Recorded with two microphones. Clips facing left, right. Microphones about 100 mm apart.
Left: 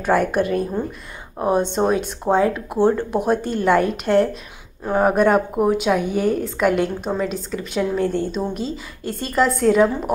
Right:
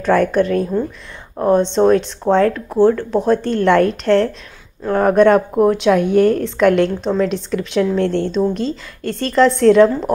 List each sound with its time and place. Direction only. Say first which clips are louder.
0.0 s speech: right 4 dB; 10° left (ahead or behind)